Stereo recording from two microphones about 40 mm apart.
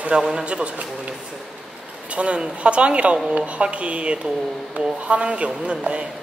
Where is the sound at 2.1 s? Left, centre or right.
Right.